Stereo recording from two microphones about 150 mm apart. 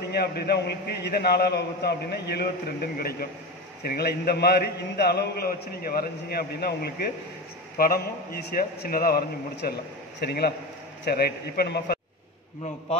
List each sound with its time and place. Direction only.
0.1 s a man's voice: 90° left